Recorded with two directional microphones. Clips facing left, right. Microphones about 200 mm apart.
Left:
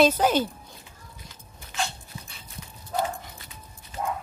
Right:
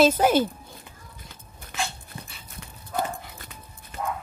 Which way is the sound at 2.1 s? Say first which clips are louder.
Right 2 dB; 60° right (ahead or behind).